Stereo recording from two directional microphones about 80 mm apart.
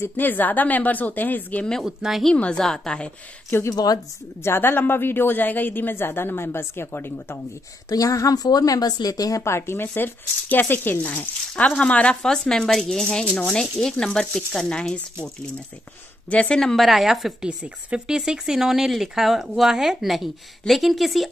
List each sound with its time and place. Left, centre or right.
0.2 s speech: left
1.8 s a woman's voice: centre
2.2 s speech: centre
3.4 s speech: left
3.7 s speech: left
4.4 s speech: left
7.9 s speech: left
9.4 s speech: left; by 15.2 s centre
16.3 s a woman's voice: centre